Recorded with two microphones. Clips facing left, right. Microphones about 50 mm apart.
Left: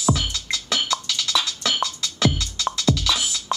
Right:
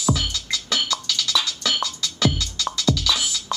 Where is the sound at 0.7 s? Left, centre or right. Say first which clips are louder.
Even; centre.